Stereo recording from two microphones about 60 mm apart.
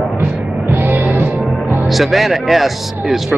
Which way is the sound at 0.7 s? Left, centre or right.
Right.